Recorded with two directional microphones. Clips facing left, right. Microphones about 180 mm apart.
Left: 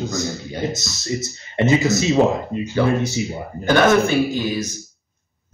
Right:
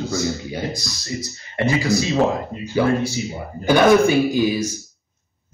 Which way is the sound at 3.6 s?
10° right (ahead or behind).